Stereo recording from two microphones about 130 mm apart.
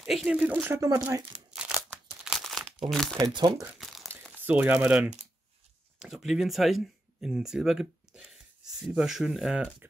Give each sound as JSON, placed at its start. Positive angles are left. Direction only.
{"t": 0.0, "sound": "speech", "side_deg": 0}
{"t": 1.6, "sound": "a sound", "side_deg": -5}
{"t": 2.0, "sound": "crumpling", "side_deg": -5}
{"t": 3.2, "sound": "speech", "side_deg": -30}
{"t": 3.8, "sound": "crumpling", "side_deg": 0}
{"t": 4.5, "sound": "speech", "side_deg": -10}